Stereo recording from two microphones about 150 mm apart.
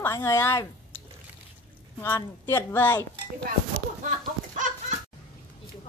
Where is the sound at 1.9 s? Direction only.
15° left (ahead or behind).